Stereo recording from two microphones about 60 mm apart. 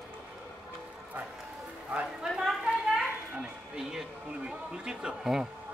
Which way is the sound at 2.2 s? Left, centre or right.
Centre.